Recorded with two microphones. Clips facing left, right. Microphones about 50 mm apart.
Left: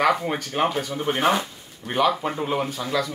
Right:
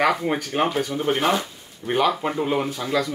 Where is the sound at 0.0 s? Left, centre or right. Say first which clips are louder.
Even; centre.